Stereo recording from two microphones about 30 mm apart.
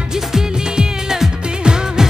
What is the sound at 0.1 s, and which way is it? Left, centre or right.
Music, centre.